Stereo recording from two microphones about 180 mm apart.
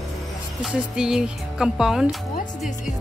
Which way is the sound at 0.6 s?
5° right (ahead or behind).